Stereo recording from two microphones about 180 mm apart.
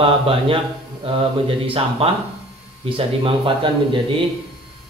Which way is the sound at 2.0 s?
35° right (ahead or behind).